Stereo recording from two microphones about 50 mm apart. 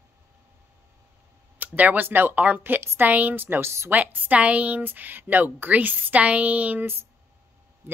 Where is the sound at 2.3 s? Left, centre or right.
Right.